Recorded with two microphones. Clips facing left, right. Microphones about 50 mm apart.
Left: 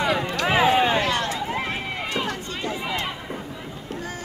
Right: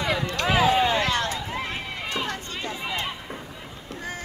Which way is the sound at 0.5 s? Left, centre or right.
Left.